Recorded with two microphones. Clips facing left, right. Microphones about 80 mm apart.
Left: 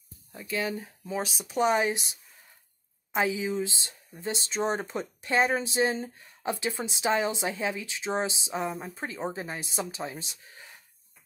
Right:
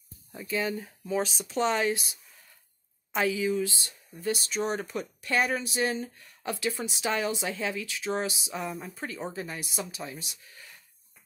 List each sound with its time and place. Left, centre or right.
0.3 s speech: centre; by 10.8 s left